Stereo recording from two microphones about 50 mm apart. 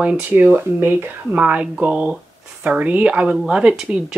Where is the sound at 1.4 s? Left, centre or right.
Right.